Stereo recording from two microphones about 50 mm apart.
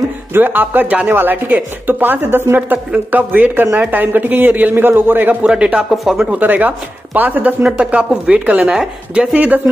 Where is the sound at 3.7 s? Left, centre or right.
Right.